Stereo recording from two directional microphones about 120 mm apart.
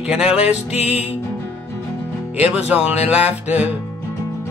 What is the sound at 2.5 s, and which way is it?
Music, 10° right (ahead or behind).